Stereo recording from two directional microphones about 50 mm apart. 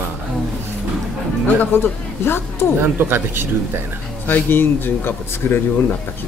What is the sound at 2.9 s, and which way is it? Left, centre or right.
Speech, right.